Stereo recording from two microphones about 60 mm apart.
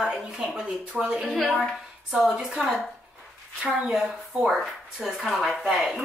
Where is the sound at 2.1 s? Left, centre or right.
Centre.